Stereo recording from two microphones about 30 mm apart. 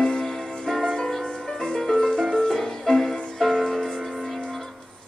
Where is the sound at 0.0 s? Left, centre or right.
Left.